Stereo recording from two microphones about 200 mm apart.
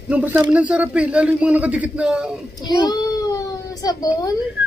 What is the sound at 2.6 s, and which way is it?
A child's voice, 20° left (ahead or behind).